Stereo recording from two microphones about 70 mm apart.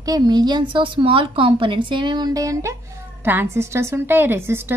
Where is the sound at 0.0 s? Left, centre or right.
Right.